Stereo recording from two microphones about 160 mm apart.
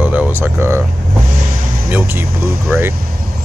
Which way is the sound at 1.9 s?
15° right (ahead or behind).